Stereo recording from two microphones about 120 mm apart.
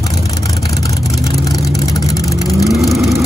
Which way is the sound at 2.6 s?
Centre (ahead or behind).